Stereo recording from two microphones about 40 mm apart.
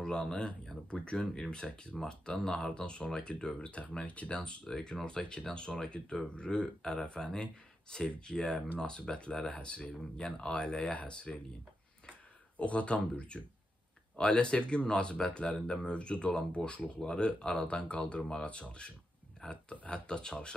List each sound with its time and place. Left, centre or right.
0.0 s speech: left
4.6 s speech: centre
12.5 s speech: left